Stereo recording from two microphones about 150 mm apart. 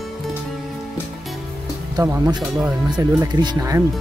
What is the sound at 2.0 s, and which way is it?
Speech, 25° right (ahead or behind).